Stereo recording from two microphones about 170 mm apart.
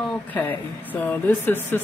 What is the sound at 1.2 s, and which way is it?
Speech, 10° left (ahead or behind).